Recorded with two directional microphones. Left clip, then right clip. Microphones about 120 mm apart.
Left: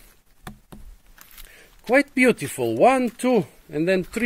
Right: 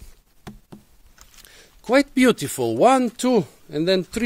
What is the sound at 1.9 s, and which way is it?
Speech, 25° right (ahead or behind).